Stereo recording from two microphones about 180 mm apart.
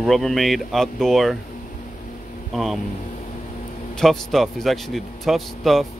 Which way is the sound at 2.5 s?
Centre (ahead or behind).